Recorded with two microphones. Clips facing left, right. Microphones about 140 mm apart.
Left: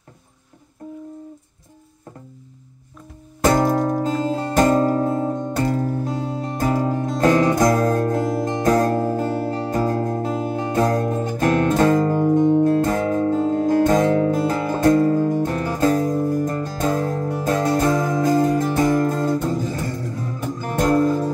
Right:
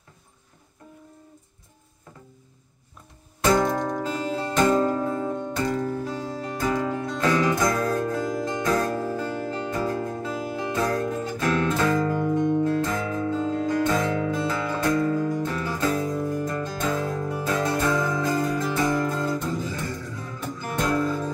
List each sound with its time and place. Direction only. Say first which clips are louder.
3.3 s music: left 4 dB; 45° left (ahead or behind)